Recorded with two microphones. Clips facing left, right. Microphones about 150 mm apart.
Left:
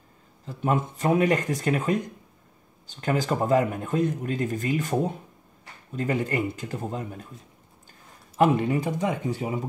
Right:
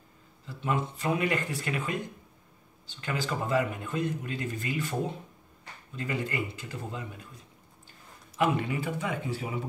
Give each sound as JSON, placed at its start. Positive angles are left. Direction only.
{"t": 0.5, "sound": "a man's voice", "side_deg": 50}
{"t": 8.4, "sound": "speech", "side_deg": 45}